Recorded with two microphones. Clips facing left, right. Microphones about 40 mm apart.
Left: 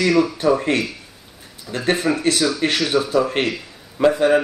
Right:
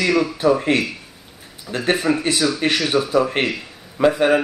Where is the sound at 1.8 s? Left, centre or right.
Right.